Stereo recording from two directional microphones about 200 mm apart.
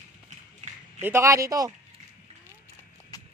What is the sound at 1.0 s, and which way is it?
Speech, 15° right (ahead or behind).